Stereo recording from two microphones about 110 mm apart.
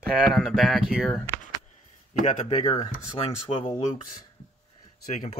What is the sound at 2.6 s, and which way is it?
Speech, 35° left (ahead or behind).